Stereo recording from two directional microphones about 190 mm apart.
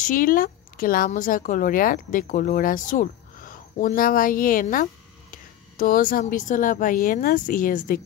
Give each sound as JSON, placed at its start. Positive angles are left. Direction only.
{"t": 0.0, "sound": "speech", "side_deg": 45}